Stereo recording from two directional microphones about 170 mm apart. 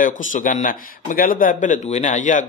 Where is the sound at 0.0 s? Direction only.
50° left (ahead or behind).